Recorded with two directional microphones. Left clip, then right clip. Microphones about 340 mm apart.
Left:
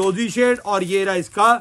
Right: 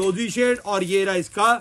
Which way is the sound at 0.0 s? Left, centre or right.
Centre.